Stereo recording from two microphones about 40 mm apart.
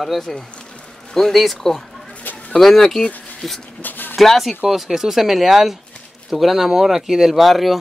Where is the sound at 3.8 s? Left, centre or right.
Left.